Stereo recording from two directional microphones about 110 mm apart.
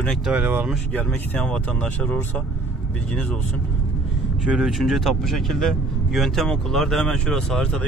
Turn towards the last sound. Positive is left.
turn(degrees=5)  # may be behind; listen again after turning